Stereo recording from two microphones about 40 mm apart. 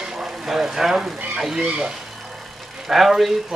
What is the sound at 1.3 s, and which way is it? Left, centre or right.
Speech, centre.